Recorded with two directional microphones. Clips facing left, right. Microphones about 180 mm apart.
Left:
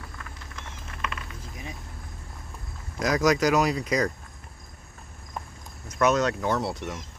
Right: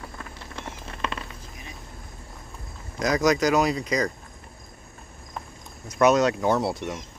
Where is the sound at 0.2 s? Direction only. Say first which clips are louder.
Right 5 dB; 30° right (ahead or behind).